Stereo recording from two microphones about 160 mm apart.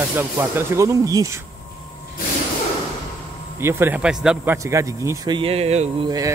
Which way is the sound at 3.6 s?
15° right (ahead or behind).